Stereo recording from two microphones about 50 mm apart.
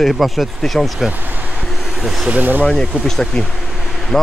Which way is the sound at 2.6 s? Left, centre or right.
Centre.